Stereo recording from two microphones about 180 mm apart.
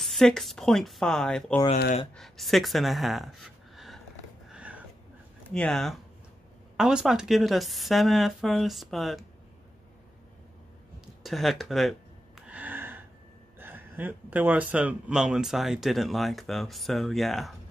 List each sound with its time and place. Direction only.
0.0 s speech: centre (ahead or behind)
4.5 s a sound: 5° right (ahead or behind)
5.5 s speech: 5° left (ahead or behind)
11.2 s speech: centre (ahead or behind)
12.4 s gasp: 10° right (ahead or behind)
13.6 s speech: 10° right (ahead or behind)